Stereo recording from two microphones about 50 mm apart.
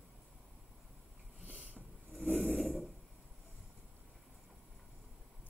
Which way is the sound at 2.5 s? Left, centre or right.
Centre.